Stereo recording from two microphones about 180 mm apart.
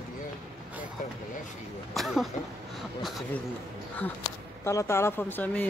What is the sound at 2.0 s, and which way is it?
Speech, centre (ahead or behind).